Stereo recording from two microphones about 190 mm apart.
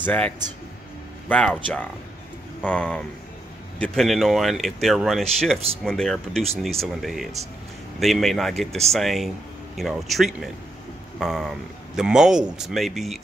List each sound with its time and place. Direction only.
0.0 s speech: 10° left (ahead or behind)
1.3 s speech: 5° left (ahead or behind)